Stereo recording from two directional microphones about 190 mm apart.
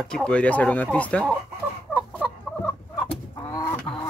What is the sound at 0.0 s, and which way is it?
Speech, 5° left (ahead or behind).